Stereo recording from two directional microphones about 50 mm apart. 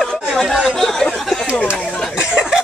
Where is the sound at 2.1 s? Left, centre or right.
Centre.